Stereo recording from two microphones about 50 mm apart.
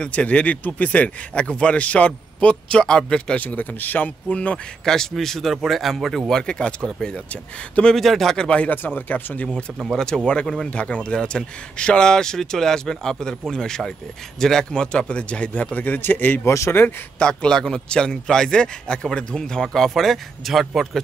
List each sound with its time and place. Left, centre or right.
0.0 s speech: left
3.3 s speech: left
4.8 s a man's voice: centre
6.3 s a man's voice: centre
7.9 s speech: centre
8.4 s speech: left
8.6 s speech: left
9.9 s a man's voice: centre; by 16.0 s left
16.4 s speech: left
17.2 s a man's voice: centre